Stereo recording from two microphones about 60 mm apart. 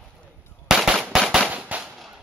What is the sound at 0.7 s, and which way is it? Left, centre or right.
Firecracker, centre.